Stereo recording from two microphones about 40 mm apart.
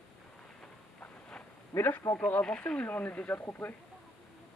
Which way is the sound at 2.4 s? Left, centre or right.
Left.